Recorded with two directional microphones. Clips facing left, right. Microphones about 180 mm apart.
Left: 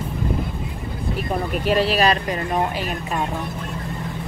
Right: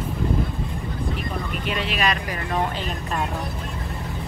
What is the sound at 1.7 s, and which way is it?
Speech, 40° left (ahead or behind).